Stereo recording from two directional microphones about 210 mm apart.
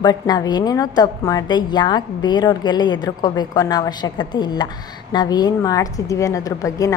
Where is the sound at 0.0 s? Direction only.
20° left (ahead or behind).